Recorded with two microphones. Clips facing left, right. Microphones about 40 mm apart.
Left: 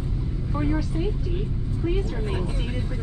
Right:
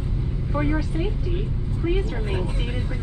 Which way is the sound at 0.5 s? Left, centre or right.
Right.